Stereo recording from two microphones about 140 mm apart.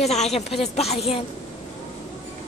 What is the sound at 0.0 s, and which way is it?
A woman's voice, 50° left (ahead or behind).